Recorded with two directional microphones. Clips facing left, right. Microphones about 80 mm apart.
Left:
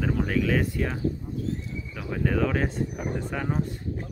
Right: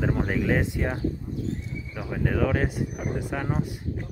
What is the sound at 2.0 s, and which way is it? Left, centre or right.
Speech, centre.